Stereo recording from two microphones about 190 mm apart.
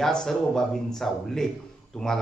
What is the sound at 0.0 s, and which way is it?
Speech, centre (ahead or behind).